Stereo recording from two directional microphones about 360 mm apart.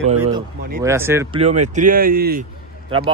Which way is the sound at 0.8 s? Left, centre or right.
Centre.